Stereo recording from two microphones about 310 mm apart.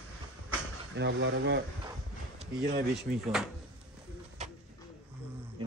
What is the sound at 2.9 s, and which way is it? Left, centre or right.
Speech, centre.